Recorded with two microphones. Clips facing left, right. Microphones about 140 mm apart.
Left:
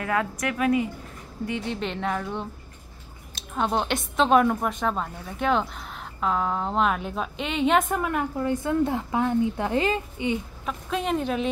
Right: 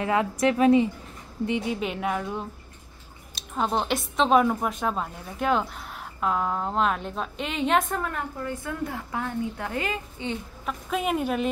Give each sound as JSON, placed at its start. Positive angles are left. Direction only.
{"t": 0.0, "sound": "a woman's voice", "side_deg": -20}
{"t": 1.7, "sound": "a woman's voice", "side_deg": -10}
{"t": 8.0, "sound": "a woman's voice", "side_deg": 15}
{"t": 10.6, "sound": "a woman's voice", "side_deg": 0}